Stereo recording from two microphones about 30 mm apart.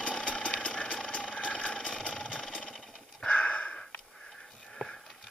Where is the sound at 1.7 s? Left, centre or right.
Left.